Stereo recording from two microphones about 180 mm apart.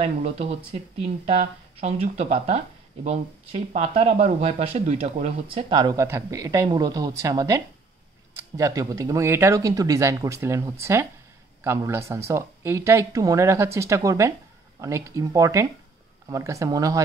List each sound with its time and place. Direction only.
0.0 s speech: 35° right (ahead or behind); by 17.0 s 20° right (ahead or behind)